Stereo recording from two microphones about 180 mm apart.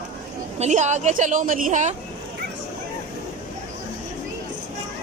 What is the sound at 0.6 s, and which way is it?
A woman's voice, 40° right (ahead or behind).